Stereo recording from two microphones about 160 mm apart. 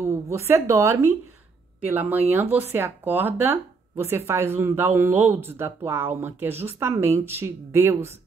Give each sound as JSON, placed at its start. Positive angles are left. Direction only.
{"t": 0.0, "sound": "speech", "side_deg": -15}